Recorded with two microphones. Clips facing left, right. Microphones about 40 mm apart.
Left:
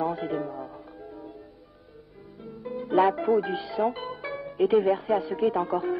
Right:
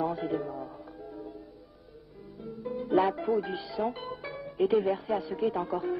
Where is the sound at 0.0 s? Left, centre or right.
Centre.